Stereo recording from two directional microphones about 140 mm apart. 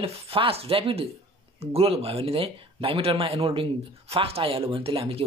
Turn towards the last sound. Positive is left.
turn(degrees=-40)  # may be behind; listen again after turning